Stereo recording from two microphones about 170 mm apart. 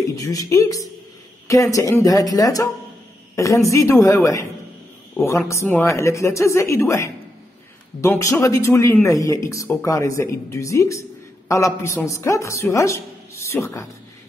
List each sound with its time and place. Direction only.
0.1 s speech: 20° left (ahead or behind)